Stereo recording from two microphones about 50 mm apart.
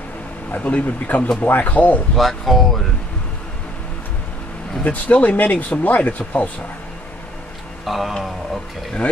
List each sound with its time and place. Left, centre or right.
0.5 s speech: left
2.1 s speech: centre
4.8 s speech: left
7.8 s speech: centre